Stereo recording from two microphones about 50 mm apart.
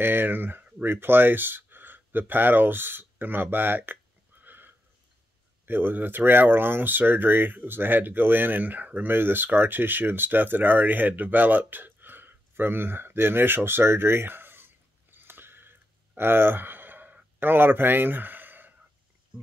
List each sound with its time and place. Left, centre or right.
0.0 s speech: right